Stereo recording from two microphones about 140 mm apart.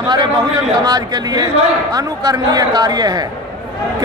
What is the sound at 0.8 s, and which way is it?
A man's voice, 30° right (ahead or behind).